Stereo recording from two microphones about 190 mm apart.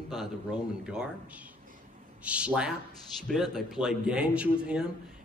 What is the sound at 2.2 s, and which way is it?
A man's voice, 5° right (ahead or behind).